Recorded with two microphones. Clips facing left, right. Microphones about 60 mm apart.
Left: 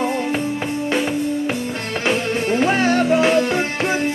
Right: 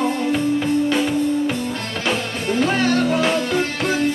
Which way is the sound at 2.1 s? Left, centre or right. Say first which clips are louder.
Left 3 dB; left.